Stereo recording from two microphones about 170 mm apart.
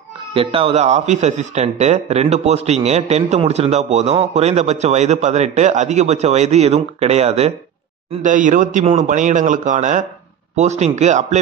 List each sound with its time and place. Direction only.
0.3 s speech: 35° right (ahead or behind)
8.2 s speech: 50° right (ahead or behind)